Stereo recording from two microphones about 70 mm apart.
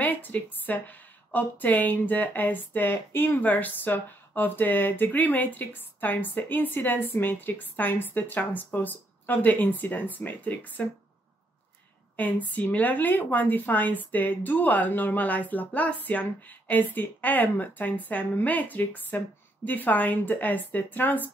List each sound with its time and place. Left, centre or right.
0.0 s a woman's voice: left
12.2 s a woman's voice: left